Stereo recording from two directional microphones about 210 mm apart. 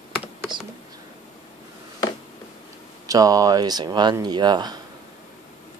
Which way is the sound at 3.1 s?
15° right (ahead or behind).